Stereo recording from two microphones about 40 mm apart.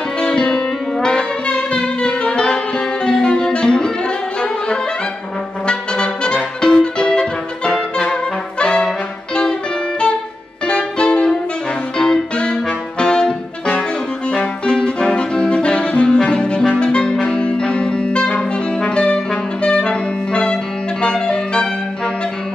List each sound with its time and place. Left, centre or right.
0.2 s music: left
5.7 s music: left
8.0 s brass instrument: left
8.8 s music: left
14.3 s saxophone: left
21.0 s music: left